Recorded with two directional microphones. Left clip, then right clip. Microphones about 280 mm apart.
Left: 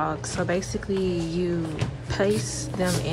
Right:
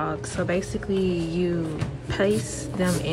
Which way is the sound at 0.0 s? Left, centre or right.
Centre.